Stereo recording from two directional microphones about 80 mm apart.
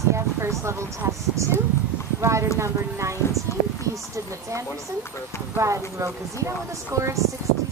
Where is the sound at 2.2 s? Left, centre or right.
Right.